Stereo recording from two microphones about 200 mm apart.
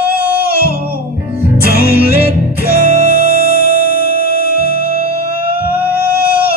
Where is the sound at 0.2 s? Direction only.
10° right (ahead or behind).